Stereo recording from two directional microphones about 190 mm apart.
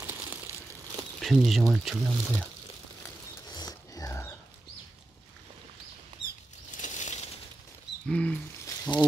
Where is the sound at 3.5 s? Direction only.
20° left (ahead or behind).